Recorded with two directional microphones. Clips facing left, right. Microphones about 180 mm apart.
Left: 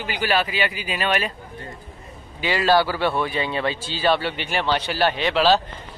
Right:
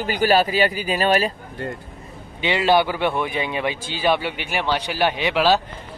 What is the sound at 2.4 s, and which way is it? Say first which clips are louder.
Speech: right 1 dB; 20° right (ahead or behind).